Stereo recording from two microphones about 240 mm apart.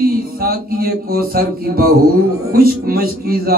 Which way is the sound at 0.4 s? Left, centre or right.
Right.